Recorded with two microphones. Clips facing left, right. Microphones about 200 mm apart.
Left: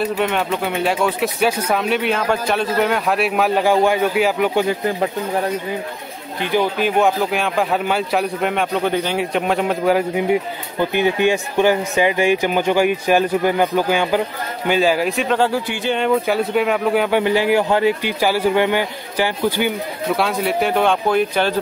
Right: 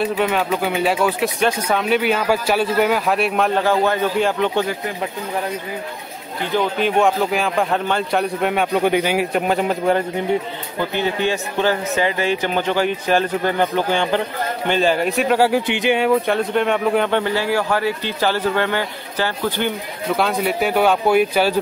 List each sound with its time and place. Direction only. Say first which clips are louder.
0.0 s speech: even; centre (ahead or behind)
6.5 s speech: left 1 dB; 5° left (ahead or behind)
10.8 s a man's voice: left 4 dB; 15° left (ahead or behind); by 16.1 s 15° right (ahead or behind)
16.1 s speech: even; 5° left (ahead or behind)
17.2 s a man's voice: left 4 dB; 15° left (ahead or behind)
20.2 s speech: right 1 dB; centre (ahead or behind)